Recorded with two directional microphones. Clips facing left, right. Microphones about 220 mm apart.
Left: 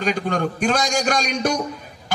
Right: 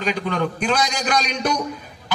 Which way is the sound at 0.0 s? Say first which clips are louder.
Left 1 dB; 45° left (ahead or behind).